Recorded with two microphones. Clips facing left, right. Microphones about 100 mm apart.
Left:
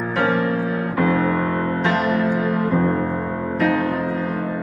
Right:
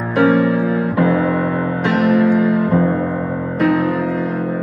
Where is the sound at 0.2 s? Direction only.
20° right (ahead or behind).